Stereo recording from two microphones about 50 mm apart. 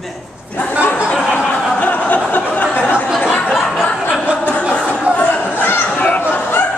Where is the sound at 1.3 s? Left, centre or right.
Left.